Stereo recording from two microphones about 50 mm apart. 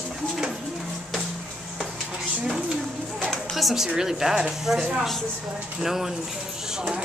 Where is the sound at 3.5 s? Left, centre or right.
Centre.